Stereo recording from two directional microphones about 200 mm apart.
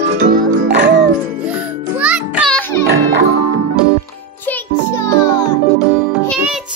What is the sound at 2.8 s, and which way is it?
Music, 50° right (ahead or behind).